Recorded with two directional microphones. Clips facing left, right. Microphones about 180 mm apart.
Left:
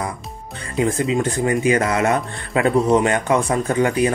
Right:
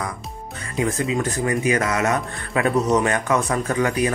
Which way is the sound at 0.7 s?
30° left (ahead or behind).